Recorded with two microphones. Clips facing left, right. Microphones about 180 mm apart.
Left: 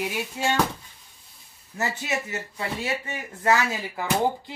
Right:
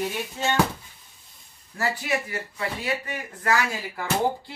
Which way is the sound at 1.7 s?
25° left (ahead or behind).